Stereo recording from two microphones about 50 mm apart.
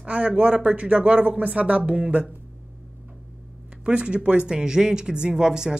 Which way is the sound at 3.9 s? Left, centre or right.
Right.